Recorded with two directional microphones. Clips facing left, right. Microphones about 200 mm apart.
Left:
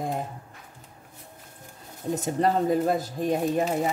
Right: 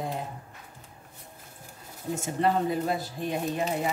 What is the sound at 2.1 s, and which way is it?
Speech, 40° left (ahead or behind).